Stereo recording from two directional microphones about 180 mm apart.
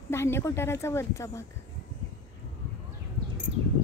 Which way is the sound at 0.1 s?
15° left (ahead or behind).